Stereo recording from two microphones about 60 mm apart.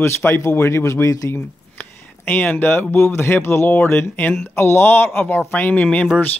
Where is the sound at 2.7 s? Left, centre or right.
Left.